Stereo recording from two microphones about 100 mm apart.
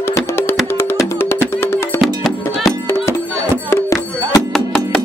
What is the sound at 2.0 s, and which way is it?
Music, centre (ahead or behind).